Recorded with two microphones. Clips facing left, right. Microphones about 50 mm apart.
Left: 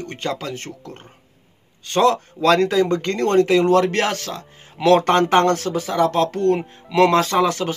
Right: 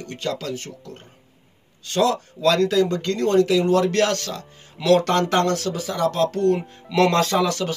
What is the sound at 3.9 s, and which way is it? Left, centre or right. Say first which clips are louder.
Speech: right 1 dB; left.